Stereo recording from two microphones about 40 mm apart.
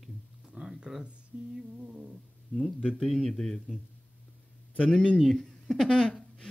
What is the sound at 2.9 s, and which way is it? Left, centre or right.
Speech, centre.